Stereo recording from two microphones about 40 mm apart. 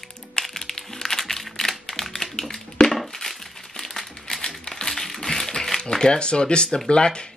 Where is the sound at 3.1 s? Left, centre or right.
Centre.